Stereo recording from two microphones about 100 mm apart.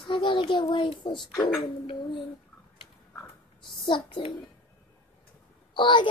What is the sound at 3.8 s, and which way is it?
Speech, 50° left (ahead or behind).